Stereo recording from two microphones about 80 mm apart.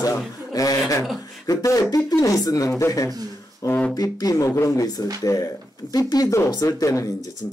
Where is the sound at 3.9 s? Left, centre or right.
Left.